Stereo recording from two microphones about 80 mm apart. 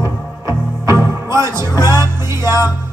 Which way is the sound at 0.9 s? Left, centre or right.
Right.